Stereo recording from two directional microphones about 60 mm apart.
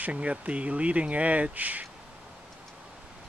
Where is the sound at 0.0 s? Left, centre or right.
Right.